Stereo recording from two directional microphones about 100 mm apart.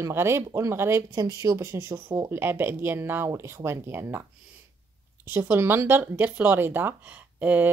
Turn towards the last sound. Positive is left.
turn(degrees=-15)  # may be behind; listen again after turning